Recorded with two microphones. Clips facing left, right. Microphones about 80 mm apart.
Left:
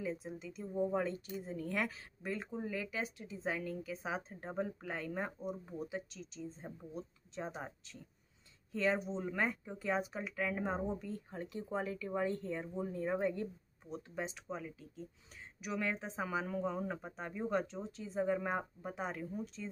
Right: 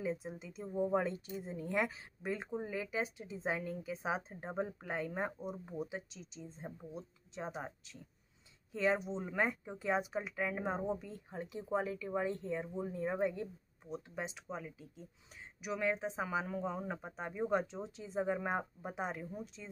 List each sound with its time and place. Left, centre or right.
0.0 s a woman's voice: right